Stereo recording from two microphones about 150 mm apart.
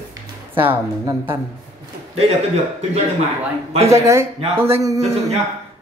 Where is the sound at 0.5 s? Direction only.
10° right (ahead or behind).